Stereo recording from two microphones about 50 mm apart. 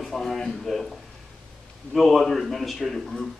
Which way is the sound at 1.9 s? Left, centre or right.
Centre.